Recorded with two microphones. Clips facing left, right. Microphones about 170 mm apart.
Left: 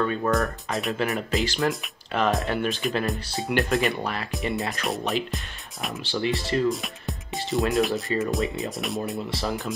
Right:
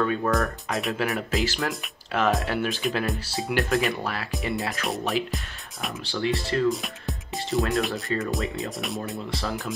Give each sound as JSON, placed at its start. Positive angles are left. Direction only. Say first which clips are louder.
{"t": 0.0, "sound": "speech", "louder": "even", "side_deg": 0}